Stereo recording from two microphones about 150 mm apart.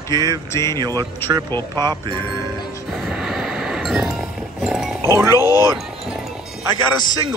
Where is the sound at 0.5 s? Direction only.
20° left (ahead or behind).